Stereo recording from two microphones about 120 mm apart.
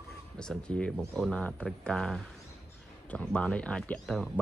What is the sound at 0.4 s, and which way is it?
Speech, 5° left (ahead or behind).